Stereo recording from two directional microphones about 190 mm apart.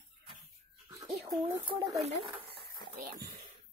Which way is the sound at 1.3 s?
15° right (ahead or behind).